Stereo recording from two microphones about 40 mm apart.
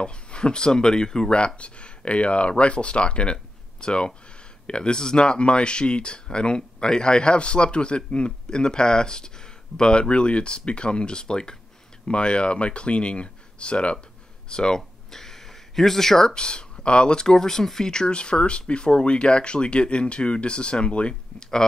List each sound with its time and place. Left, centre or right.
0.0 s speech: left
14.8 s speech: centre